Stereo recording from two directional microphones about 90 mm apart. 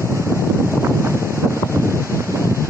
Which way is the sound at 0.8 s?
30° right (ahead or behind).